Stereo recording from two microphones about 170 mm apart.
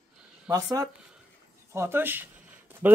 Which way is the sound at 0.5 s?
20° right (ahead or behind).